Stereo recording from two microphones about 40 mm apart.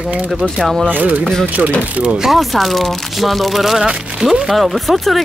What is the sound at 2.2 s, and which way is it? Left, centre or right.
Speech, centre.